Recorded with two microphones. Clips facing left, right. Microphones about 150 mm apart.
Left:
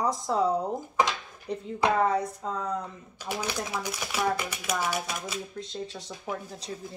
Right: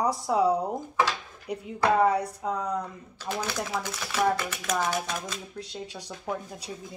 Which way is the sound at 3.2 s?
15° left (ahead or behind).